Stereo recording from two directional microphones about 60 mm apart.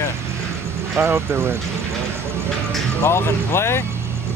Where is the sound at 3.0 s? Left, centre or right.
Left.